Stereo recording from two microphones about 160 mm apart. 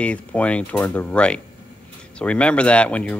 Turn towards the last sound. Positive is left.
turn(degrees=10)  # may be behind; listen again after turning